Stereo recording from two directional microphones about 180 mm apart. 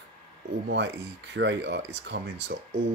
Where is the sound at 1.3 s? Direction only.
80° right.